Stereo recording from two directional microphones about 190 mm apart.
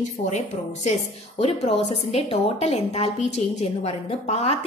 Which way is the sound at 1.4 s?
30° left (ahead or behind).